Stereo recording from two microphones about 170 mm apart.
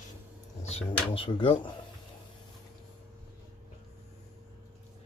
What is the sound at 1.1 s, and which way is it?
Speech, 30° left (ahead or behind).